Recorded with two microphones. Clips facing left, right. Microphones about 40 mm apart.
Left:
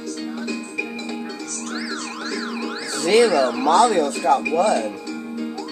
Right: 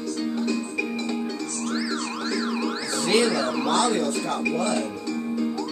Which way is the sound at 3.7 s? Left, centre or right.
Left.